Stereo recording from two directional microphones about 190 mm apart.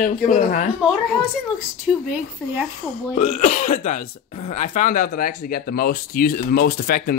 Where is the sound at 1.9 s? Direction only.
Centre (ahead or behind).